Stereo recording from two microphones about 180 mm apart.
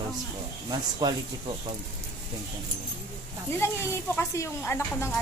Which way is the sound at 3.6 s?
15° left (ahead or behind).